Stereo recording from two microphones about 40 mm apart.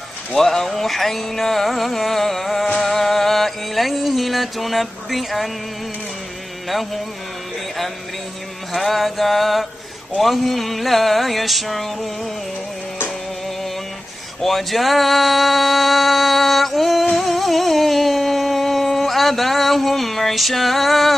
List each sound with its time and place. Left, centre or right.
0.3 s music: centre
6.7 s music: centre
8.7 s music: centre
14.4 s music: centre
17.1 s a sound: centre